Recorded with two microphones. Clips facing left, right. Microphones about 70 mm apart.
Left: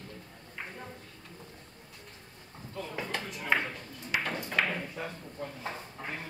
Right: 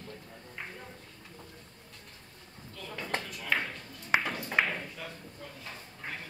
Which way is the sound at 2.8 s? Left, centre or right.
Left.